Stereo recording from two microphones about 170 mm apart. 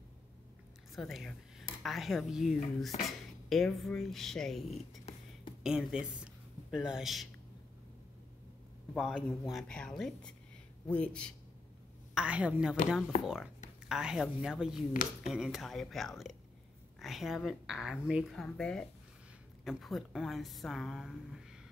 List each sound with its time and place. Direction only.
0.9 s a woman's voice: centre (ahead or behind)
8.9 s a woman's voice: 5° left (ahead or behind)
12.1 s a woman's voice: 5° right (ahead or behind)